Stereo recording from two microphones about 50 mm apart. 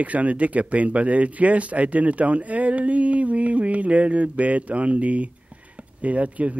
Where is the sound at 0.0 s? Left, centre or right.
Right.